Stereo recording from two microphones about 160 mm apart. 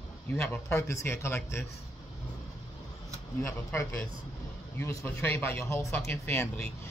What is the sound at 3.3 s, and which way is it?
Speech, 15° left (ahead or behind).